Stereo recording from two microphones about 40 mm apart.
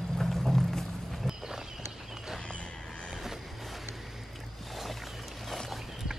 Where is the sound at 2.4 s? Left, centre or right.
Left.